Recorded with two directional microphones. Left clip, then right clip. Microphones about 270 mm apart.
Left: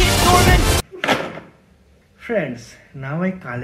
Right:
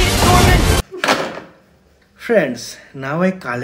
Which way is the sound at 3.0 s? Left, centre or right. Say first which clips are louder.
Right 7 dB; centre.